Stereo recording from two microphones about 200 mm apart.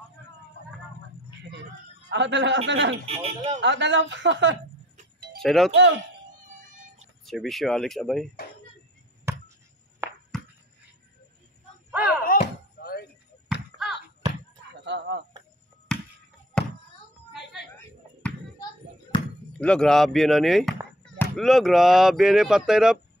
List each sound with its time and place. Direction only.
2.0 s speech: 60° right (ahead or behind)
3.1 s speech: 35° right (ahead or behind)
3.6 s speech: 65° right (ahead or behind)
5.4 s speech: centre (ahead or behind)
6.4 s synthetic singing: 40° right (ahead or behind)
7.2 s speech: centre (ahead or behind)
10.0 s chop: 10° right (ahead or behind)
11.9 s slam: 5° right (ahead or behind)
12.2 s a sound: 45° left (ahead or behind)
13.8 s basketball bounce: centre (ahead or behind)
14.9 s chicken: 60° right (ahead or behind)
15.9 s a sound: 5° left (ahead or behind)
19.6 s speech: 5° left (ahead or behind)